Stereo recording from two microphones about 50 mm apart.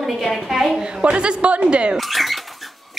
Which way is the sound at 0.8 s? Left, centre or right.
Centre.